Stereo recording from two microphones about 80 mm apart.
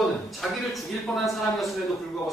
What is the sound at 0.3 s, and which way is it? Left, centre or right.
Speech, centre.